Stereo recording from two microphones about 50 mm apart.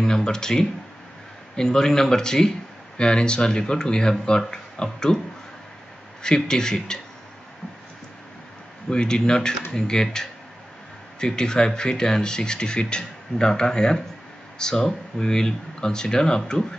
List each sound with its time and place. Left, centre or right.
0.0 s speech: centre
6.2 s speech: centre
8.9 s speech: centre